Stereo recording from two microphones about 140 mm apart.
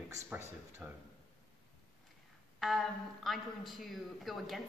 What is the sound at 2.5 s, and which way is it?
A man's voice, centre (ahead or behind).